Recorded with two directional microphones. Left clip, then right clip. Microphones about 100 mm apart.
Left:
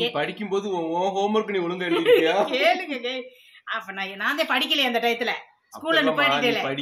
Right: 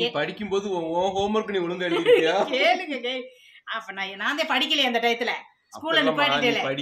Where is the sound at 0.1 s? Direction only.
15° right (ahead or behind).